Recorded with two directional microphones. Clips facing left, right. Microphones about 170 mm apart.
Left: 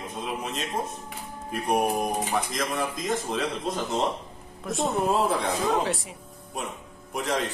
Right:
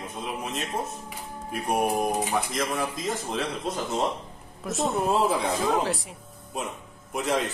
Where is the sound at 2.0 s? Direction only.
5° right (ahead or behind).